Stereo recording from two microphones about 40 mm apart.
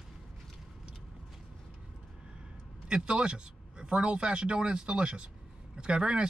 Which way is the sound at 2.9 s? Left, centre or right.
Right.